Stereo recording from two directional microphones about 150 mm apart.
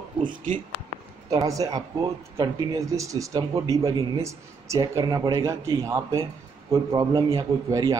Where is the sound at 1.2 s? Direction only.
25° right (ahead or behind).